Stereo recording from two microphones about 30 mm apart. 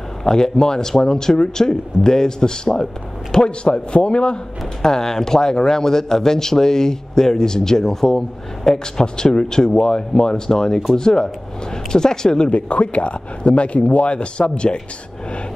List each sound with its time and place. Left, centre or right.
0.2 s speech: left
4.8 s speech: centre
8.7 s speech: left
12.4 s speech: left